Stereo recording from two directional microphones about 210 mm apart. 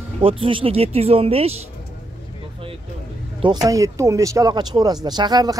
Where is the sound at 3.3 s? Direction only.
20° right (ahead or behind).